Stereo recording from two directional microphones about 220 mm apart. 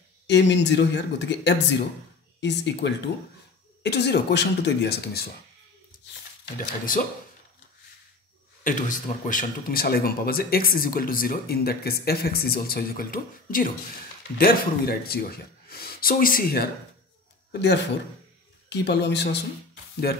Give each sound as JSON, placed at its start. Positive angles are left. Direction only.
{"t": 0.3, "sound": "speech", "side_deg": 55}
{"t": 6.9, "sound": "speech", "side_deg": 40}
{"t": 8.6, "sound": "speech", "side_deg": 35}